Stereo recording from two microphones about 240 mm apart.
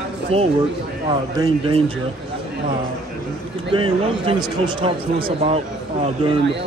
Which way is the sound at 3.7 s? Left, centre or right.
Right.